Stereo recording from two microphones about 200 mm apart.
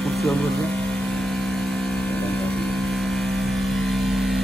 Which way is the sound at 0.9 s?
5° left (ahead or behind).